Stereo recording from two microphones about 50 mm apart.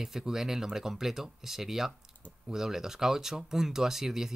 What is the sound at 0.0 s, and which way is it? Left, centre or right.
Speech, centre.